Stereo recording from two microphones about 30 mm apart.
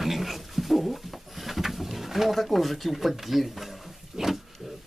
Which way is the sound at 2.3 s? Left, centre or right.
Centre.